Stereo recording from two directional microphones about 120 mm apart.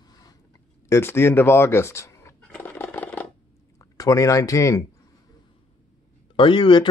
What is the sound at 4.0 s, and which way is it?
Speech, 30° left (ahead or behind).